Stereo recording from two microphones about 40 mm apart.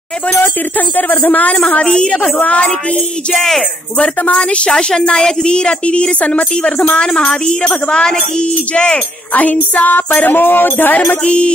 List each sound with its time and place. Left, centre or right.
0.7 s speech: left
1.5 s a woman's voice: left
2.2 s speech: left
4.0 s speech: left
4.6 s a woman's voice: centre
9.3 s speech: left
11.2 s a woman's voice: left